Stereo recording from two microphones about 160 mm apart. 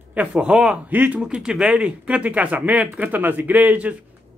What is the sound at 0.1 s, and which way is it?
Speech, 10° right (ahead or behind).